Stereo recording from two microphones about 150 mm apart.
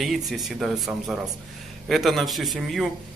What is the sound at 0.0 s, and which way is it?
Speech, centre (ahead or behind).